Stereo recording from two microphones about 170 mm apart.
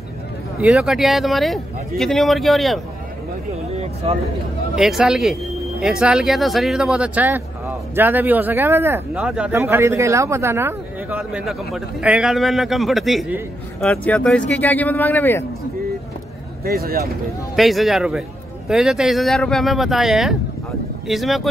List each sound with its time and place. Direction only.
0.6 s speech: 5° right (ahead or behind)
3.8 s speech: 35° right (ahead or behind)
4.7 s speech: centre (ahead or behind)
11.1 s speech: centre (ahead or behind)
16.6 s speech: 65° right (ahead or behind)
17.6 s speech: centre (ahead or behind)